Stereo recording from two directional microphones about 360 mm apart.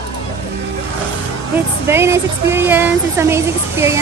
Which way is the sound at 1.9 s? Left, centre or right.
Centre.